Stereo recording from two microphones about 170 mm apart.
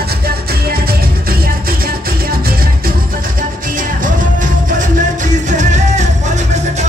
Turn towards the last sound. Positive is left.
turn(degrees=-45)  # may be behind; listen again after turning